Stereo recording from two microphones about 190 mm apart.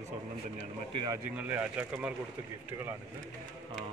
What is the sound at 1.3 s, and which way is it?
Speech, 5° right (ahead or behind).